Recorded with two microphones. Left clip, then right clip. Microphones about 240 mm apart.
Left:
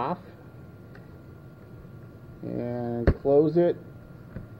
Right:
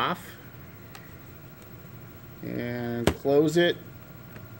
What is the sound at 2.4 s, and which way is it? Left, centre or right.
Speech, right.